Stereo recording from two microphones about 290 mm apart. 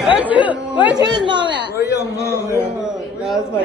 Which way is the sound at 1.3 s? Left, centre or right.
Centre.